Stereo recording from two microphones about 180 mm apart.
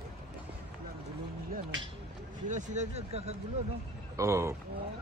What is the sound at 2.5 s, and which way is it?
Speech, 40° right (ahead or behind).